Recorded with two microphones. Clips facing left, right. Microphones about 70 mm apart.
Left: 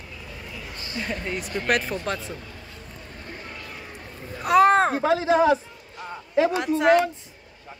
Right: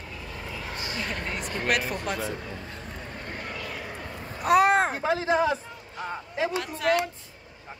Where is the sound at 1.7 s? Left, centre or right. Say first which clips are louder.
Left 3 dB; centre.